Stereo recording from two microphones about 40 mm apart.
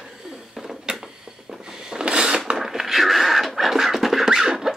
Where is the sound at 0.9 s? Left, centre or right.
Right.